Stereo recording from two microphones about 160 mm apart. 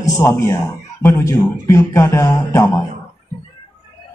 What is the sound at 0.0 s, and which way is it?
Speech, 20° left (ahead or behind).